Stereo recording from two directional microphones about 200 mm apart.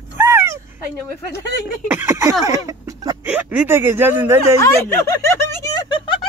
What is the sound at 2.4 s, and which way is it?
Speech, 15° right (ahead or behind).